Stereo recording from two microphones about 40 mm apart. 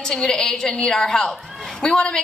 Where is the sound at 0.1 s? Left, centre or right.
Centre.